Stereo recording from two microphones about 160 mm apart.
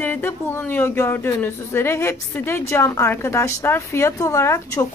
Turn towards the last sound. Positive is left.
turn(degrees=20)  # may be behind; listen again after turning